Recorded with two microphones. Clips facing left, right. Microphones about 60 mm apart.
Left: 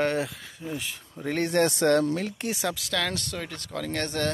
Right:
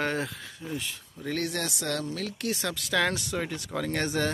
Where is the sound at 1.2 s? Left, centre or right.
Left.